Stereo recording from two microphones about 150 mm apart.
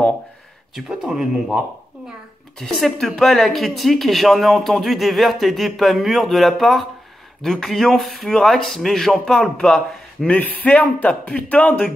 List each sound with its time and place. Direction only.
0.7 s speech: centre (ahead or behind)
2.6 s a man's voice: centre (ahead or behind)